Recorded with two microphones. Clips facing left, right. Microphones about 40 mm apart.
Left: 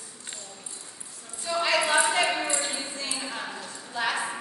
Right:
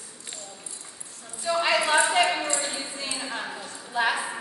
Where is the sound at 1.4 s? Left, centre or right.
Centre.